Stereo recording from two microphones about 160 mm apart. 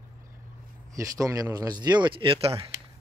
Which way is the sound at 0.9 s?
20° right (ahead or behind).